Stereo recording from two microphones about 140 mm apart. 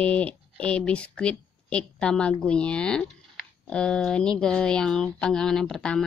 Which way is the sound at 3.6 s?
5° left (ahead or behind).